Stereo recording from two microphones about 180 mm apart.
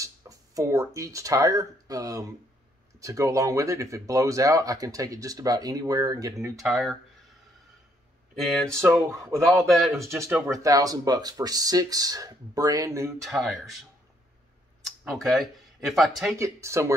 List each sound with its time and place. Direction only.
0.0 s speech: 20° right (ahead or behind)
6.6 s speech: centre (ahead or behind)
8.4 s speech: centre (ahead or behind)
9.9 s speech: 15° right (ahead or behind)
13.2 s speech: centre (ahead or behind)
14.9 s speech: centre (ahead or behind)
16.3 s speech: 15° right (ahead or behind)